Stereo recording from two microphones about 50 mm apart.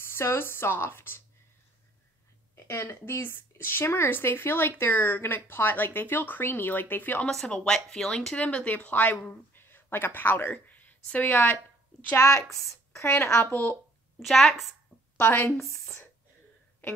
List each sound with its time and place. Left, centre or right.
0.0 s speech: left
2.5 s a woman's voice: left
7.4 s speech: centre
8.4 s a woman's voice: left
12.2 s a woman's voice: left
13.0 s speech: left
13.4 s a woman's voice: left
14.2 s a woman's voice: centre
15.1 s a woman's voice: left